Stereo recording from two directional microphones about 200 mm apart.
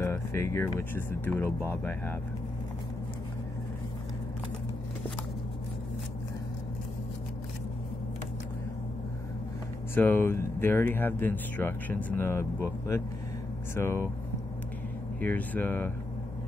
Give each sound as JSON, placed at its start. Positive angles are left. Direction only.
{"t": 0.0, "sound": "speech", "side_deg": 15}
{"t": 9.9, "sound": "speech", "side_deg": 10}
{"t": 15.1, "sound": "speech", "side_deg": 5}